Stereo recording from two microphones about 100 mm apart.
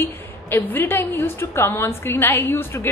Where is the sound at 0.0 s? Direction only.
20° left (ahead or behind).